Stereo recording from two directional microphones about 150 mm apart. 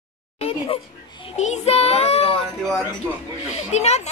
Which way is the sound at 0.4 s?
40° left (ahead or behind).